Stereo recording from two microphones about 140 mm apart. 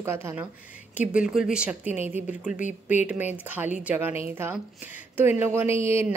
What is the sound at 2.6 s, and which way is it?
Speech, 60° left (ahead or behind).